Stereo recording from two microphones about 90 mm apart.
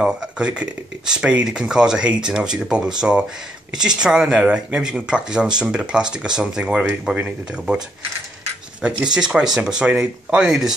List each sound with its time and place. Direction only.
0.0 s speech: 10° right (ahead or behind)
8.8 s speech: 10° right (ahead or behind)